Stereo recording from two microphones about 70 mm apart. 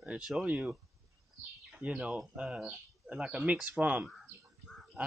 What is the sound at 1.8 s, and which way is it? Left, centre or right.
Speech, centre.